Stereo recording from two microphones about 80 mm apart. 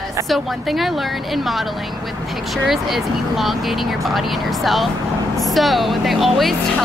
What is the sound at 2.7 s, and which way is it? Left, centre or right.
Speech, centre.